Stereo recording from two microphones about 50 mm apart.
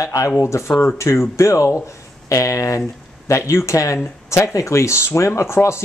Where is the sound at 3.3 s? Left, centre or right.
Left.